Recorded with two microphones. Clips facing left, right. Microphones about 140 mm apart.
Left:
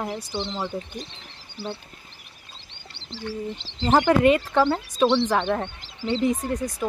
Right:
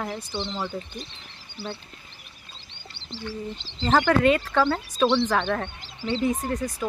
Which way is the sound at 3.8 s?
15° left (ahead or behind).